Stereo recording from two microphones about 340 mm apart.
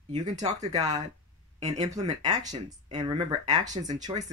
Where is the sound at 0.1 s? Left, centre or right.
Centre.